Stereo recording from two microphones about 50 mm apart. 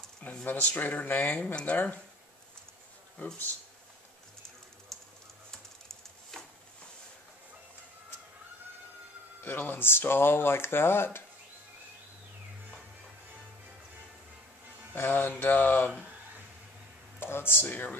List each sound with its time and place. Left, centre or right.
0.5 s a sound: left
1.3 s speech: left
4.9 s typing: centre
5.5 s typewriter: centre
9.4 s speech: left
15.0 s a sound: left
17.2 s speech: left